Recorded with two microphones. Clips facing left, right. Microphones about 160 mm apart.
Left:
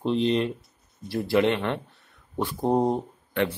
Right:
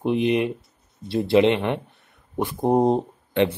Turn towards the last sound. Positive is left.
turn(degrees=-20)  # may be behind; listen again after turning